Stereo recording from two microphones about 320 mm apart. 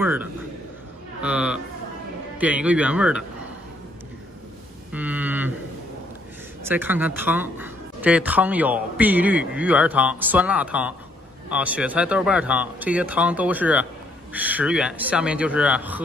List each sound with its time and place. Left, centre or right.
0.0 s a man's voice: centre
4.9 s speech: centre
6.6 s speech: centre